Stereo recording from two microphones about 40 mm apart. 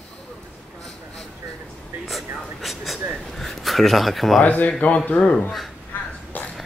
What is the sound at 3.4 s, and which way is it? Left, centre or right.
Speech, centre.